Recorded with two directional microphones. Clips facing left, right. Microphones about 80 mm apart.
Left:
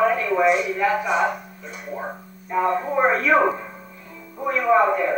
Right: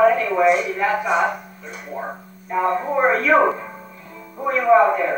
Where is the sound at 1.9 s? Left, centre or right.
Centre.